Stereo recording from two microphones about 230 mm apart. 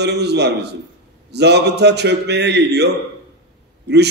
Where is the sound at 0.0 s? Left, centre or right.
Right.